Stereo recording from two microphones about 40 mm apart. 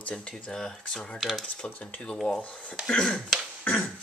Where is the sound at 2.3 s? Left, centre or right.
Left.